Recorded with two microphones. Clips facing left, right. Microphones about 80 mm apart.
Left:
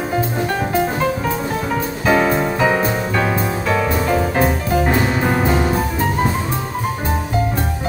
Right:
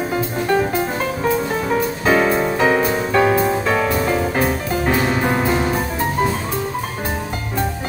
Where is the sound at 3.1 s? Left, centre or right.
Centre.